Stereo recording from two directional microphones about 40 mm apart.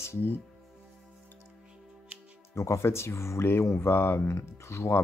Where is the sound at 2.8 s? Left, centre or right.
Left.